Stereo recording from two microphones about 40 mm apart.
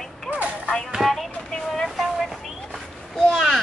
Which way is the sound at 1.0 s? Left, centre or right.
Centre.